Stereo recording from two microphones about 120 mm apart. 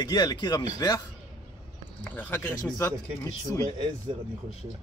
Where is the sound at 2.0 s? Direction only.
15° left (ahead or behind).